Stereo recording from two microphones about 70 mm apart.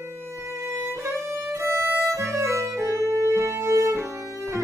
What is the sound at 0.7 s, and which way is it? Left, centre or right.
Violin, right.